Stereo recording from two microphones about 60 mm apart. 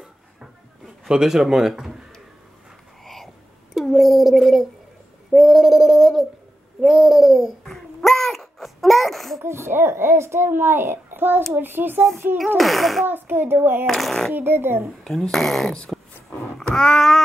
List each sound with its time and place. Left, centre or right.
1.0 s a man's voice: centre
3.0 s whispering: centre
3.7 s speech: centre
5.3 s a sound: centre
9.4 s a child's voice: right
12.5 s speech: centre
13.0 s speech: right
13.8 s speech: centre
14.3 s speech: right
15.0 s speech: centre
15.9 s roaring cats: centre
16.7 s a sound: centre